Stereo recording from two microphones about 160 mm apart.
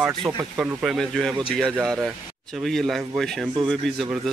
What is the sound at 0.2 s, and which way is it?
Speech, 10° right (ahead or behind).